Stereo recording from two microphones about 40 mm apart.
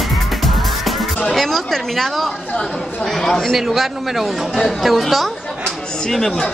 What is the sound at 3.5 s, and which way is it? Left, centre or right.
Speech, centre.